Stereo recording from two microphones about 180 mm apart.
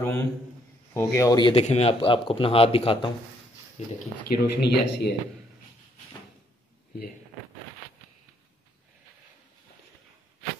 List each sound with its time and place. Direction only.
0.0 s a man's voice: 15° left (ahead or behind); by 3.9 s 35° left (ahead or behind)
4.3 s speech: 65° left (ahead or behind)